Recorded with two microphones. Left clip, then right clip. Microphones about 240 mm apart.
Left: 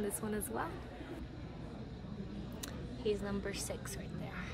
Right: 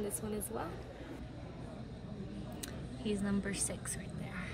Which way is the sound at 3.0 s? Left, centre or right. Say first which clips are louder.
Left 1 dB; left.